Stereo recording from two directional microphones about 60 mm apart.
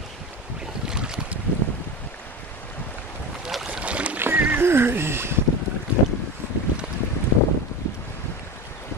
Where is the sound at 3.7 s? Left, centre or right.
Right.